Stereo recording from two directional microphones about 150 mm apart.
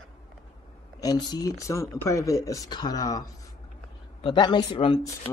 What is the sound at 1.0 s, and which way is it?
Speech, 25° left (ahead or behind).